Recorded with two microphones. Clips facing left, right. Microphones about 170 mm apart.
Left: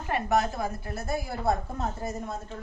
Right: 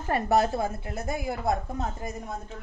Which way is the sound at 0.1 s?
35° right (ahead or behind).